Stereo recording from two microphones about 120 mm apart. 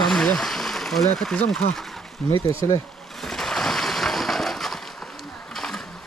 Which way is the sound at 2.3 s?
50° right (ahead or behind).